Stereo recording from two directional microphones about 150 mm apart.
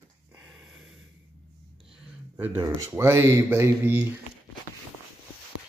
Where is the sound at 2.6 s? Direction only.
20° right (ahead or behind).